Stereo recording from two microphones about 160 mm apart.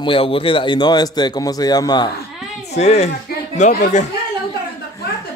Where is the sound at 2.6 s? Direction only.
45° left (ahead or behind).